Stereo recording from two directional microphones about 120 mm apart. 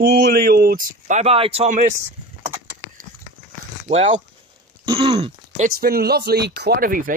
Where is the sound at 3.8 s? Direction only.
80° right.